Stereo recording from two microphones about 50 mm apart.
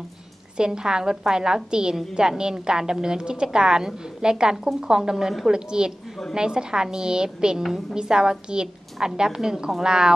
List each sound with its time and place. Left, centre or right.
0.6 s a woman's voice: centre